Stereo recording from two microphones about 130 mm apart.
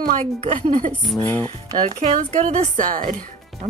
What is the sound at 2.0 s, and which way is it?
A woman's voice, 60° right (ahead or behind).